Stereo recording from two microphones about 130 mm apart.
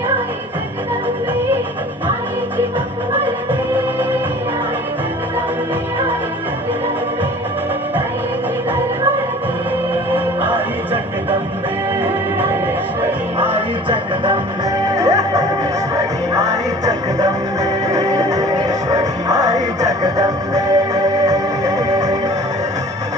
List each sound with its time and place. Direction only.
13.4 s music: 45° right (ahead or behind)
15.0 s music: 25° right (ahead or behind)